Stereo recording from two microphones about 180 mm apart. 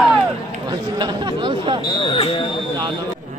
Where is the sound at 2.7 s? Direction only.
25° right (ahead or behind).